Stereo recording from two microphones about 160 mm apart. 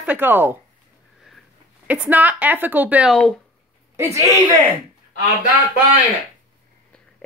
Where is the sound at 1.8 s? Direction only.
10° right (ahead or behind).